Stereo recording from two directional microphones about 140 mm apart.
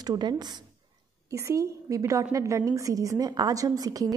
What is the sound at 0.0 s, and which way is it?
A woman's voice, 30° right (ahead or behind).